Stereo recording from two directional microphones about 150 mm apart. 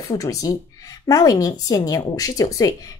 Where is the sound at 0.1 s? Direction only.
25° left (ahead or behind).